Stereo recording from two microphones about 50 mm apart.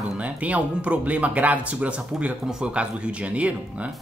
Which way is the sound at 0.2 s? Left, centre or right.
Right.